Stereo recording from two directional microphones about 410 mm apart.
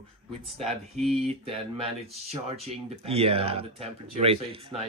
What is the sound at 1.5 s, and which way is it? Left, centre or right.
Speech, centre.